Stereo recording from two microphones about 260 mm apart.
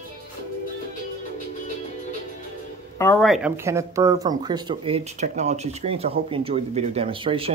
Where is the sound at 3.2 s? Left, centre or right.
Centre.